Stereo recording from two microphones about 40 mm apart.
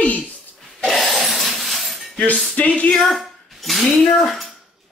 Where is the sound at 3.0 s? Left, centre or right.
Centre.